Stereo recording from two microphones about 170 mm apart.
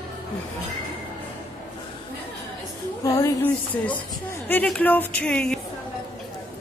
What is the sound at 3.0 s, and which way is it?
Speech, 20° left (ahead or behind).